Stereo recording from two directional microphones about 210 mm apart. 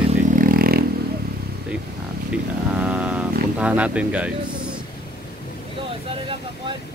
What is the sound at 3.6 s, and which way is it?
Speech, 5° right (ahead or behind).